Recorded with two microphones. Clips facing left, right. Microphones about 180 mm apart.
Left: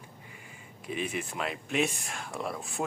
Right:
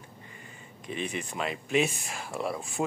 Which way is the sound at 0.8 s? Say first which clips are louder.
Even; 5° left (ahead or behind).